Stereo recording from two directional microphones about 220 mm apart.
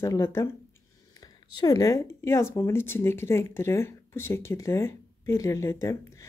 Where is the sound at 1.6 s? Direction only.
15° left (ahead or behind).